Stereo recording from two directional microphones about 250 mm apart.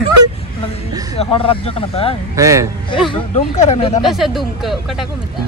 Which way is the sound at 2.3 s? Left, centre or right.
Centre.